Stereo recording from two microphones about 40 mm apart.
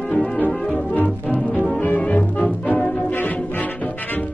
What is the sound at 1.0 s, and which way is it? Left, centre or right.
Music, left.